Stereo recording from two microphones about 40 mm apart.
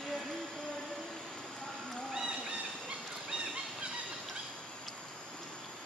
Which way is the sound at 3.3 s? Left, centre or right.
Right.